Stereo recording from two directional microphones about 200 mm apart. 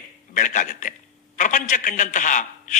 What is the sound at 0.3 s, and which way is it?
A man's voice, 40° left (ahead or behind).